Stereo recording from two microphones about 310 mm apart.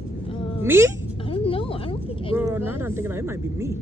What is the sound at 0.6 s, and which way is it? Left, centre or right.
Speech, centre.